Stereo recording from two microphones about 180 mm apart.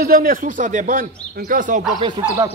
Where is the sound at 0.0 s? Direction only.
55° right (ahead or behind).